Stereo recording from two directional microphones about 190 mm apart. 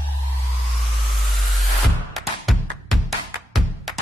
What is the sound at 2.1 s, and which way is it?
Music, centre (ahead or behind).